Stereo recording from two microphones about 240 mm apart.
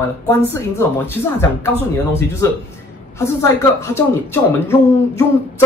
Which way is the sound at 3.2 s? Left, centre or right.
Centre.